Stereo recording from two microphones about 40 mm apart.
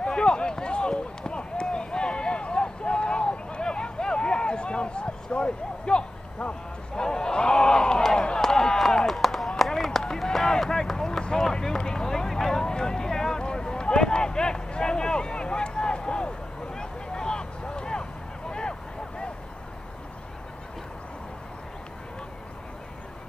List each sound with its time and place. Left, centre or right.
0.0 s run: left
7.0 s a sound: centre
8.4 s chop: centre
10.3 s run: centre
11.6 s vehicle: centre
13.4 s a sound: left
18.5 s vehicle: left